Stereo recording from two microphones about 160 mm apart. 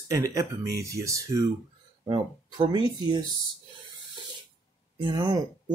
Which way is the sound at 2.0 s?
30° right (ahead or behind).